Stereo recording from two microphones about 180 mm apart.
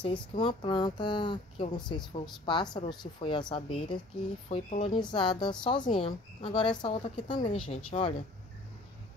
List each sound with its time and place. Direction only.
0.0 s speech: 30° left (ahead or behind)